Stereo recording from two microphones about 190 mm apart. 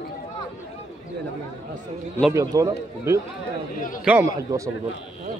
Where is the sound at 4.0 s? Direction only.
5° right (ahead or behind).